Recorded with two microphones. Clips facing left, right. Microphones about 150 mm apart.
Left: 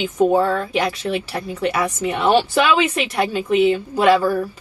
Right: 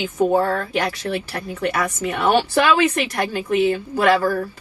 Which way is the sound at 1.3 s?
30° left (ahead or behind).